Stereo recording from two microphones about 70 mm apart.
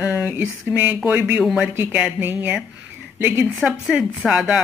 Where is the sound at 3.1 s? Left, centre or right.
Right.